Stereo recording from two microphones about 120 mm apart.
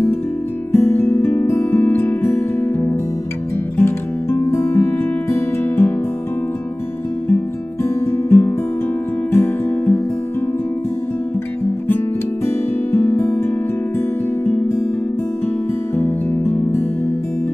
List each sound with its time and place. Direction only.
0.7 s music: 20° left (ahead or behind)
7.2 s music: 20° left (ahead or behind)
12.4 s music: 20° left (ahead or behind)
16.0 s music: 20° left (ahead or behind)